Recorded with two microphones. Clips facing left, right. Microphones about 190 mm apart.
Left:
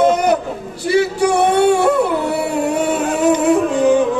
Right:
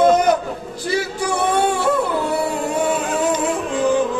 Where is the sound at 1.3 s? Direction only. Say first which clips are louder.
Left 4 dB; 65° left (ahead or behind).